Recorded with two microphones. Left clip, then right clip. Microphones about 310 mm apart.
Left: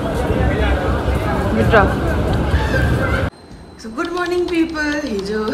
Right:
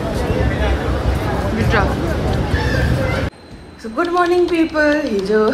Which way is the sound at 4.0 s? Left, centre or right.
Centre.